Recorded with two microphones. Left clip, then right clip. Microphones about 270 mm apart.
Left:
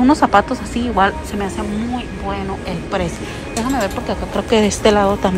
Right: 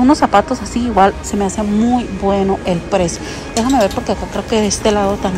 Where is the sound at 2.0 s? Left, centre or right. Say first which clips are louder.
Right 8 dB; right.